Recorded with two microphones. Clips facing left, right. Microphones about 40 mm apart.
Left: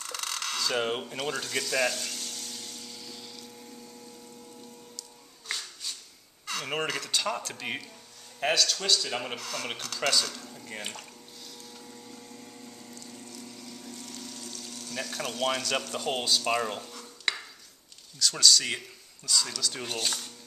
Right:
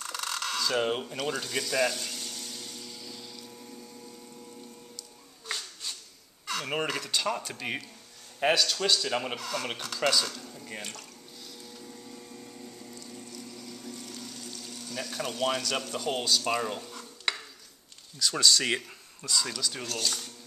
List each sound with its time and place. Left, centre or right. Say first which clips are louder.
0.0 s a sound: right 1 dB; centre
6.4 s speech: right 1 dB; centre
8.4 s speech: right 2 dB; centre
11.8 s pump: right 1 dB; centre
16.9 s dishes: left 1 dB; centre
18.2 s speech: left 1 dB; centre
18.5 s speech: right 1 dB; right
19.2 s speech: even; centre
19.8 s speech: left 1 dB; left